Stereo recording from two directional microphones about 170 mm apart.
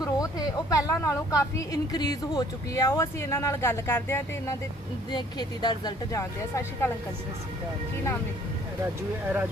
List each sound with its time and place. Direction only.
0.0 s a woman's voice: 20° left (ahead or behind)
5.1 s a woman's voice: 25° left (ahead or behind)